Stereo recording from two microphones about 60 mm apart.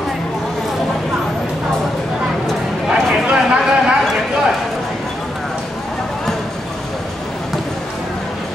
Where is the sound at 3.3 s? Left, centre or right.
Centre.